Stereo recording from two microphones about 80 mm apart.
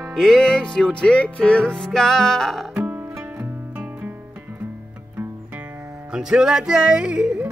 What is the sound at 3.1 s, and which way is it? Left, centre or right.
Music, right.